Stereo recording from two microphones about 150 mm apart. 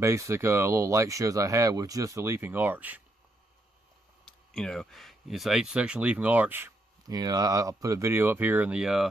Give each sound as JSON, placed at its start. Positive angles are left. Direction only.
{"t": 0.0, "sound": "speech", "side_deg": -20}
{"t": 4.2, "sound": "speech", "side_deg": 5}
{"t": 7.1, "sound": "speech", "side_deg": -25}